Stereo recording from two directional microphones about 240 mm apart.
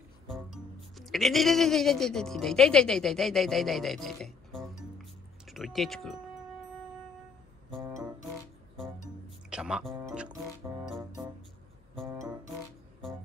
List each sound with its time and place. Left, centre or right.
0.3 s speech: centre
9.5 s speech: centre